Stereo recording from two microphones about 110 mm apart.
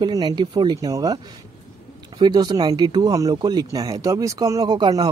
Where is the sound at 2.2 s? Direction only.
40° right (ahead or behind).